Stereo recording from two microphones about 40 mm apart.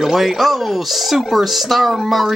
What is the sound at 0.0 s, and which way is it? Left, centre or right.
Speech, centre.